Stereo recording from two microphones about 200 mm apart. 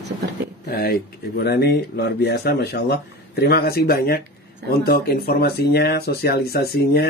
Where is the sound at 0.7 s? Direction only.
50° left (ahead or behind).